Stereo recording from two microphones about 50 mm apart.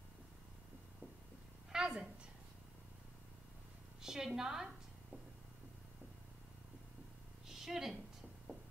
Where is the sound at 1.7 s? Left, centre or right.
Centre.